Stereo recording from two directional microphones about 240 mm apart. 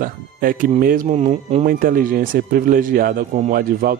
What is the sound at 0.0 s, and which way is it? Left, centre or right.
Speech, right.